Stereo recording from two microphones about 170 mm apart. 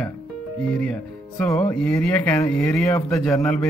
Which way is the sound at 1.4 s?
5° left (ahead or behind).